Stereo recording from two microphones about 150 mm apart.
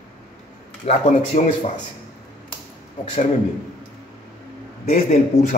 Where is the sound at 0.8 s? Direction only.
45° left (ahead or behind).